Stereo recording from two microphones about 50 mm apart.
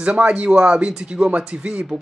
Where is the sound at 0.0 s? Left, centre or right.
Right.